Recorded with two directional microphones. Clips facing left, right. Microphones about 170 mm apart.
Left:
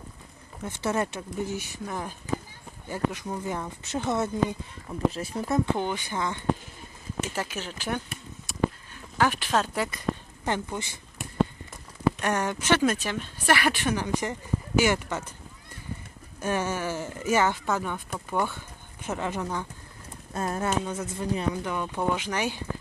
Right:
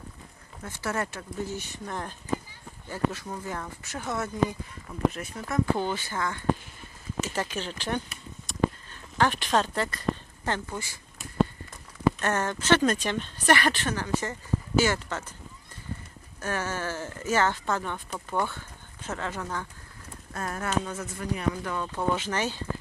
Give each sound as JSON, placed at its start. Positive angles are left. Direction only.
{"t": 0.7, "sound": "speech", "side_deg": 20}
{"t": 5.5, "sound": "speech", "side_deg": 15}
{"t": 8.5, "sound": "a sound", "side_deg": 10}
{"t": 12.2, "sound": "speech", "side_deg": 10}
{"t": 16.3, "sound": "speech", "side_deg": 15}